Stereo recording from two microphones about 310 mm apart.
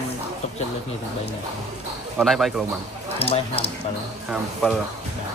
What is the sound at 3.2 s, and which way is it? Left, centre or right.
Speech, centre.